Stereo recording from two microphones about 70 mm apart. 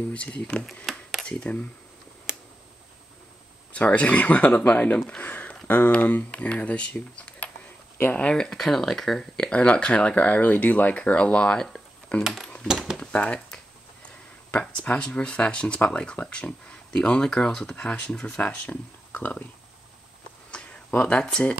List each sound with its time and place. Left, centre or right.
0.1 s speech: centre
0.9 s a sound: centre
1.2 s speech: centre
3.7 s speech: left
5.2 s a sound: left
5.7 s speech: left; by 11.8 s centre
12.2 s speech: centre
13.0 s speech: centre
14.5 s speech: left
20.5 s speech: centre